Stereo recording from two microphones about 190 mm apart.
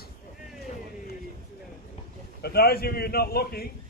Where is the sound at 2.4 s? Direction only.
55° left (ahead or behind).